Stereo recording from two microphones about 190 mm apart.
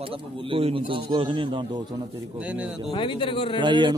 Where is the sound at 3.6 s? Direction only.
25° right (ahead or behind).